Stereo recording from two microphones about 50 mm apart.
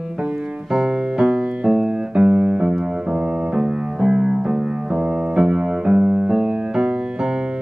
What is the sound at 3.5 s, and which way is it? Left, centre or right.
Piano, centre.